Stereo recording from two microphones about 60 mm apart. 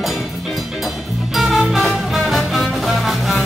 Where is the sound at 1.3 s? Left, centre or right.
Centre.